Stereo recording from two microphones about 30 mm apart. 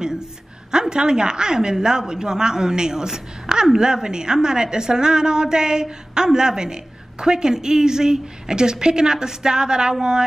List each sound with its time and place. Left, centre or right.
0.7 s a woman's voice: right